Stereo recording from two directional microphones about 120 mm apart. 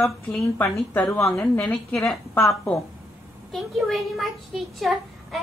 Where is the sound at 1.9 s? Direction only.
25° left (ahead or behind).